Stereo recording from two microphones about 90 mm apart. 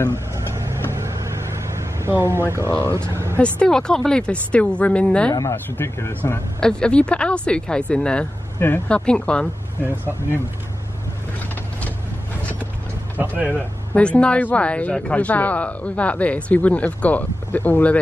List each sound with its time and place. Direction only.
0.1 s vehicle: 30° right (ahead or behind)
2.9 s speech: 30° right (ahead or behind)
3.3 s speech: 15° left (ahead or behind)
5.3 s speech: 40° left (ahead or behind)
5.7 s speech: 25° left (ahead or behind)
6.6 s speech: 10° left (ahead or behind)
8.5 s speech: 25° left (ahead or behind)
8.8 s speech: 10° left (ahead or behind)
13.2 s speech: 20° right (ahead or behind)
13.9 s speech: 10° left (ahead or behind)